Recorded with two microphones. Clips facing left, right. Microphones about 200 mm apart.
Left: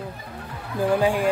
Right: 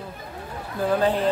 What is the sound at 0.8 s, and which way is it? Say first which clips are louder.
Speech: left 1 dB; 10° left (ahead or behind).